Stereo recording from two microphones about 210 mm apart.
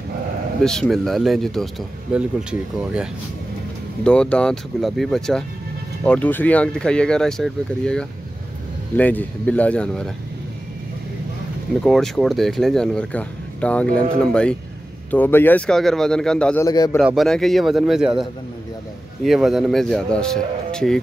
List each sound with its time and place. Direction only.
0.7 s speech: centre (ahead or behind)
4.0 s speech: 5° left (ahead or behind)
11.8 s speech: centre (ahead or behind)
16.6 s a man's voice: 15° left (ahead or behind)
17.0 s speech: centre (ahead or behind)